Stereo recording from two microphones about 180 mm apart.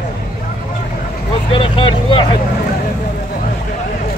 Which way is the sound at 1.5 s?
30° left (ahead or behind).